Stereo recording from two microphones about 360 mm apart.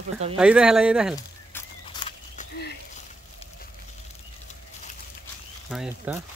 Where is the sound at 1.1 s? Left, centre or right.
Centre.